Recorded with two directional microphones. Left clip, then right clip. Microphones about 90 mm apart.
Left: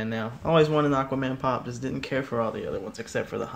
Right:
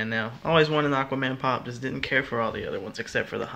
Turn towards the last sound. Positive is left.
turn(degrees=15)  # may be behind; listen again after turning